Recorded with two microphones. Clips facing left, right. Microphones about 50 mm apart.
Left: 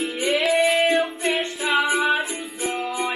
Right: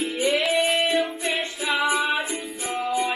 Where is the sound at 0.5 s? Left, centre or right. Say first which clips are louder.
Left 3 dB; left.